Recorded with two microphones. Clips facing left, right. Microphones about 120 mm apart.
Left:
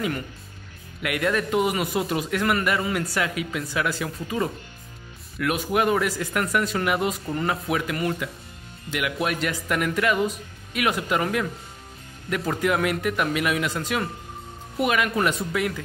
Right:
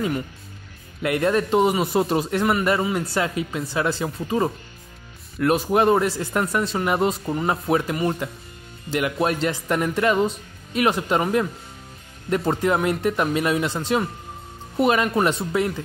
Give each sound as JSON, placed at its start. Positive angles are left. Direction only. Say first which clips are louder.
{"t": 1.0, "sound": "speech", "louder": "right 4 dB", "side_deg": -30}
{"t": 12.3, "sound": "speech", "louder": "right 3 dB", "side_deg": -30}